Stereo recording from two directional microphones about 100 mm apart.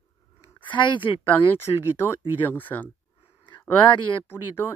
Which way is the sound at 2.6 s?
15° left (ahead or behind).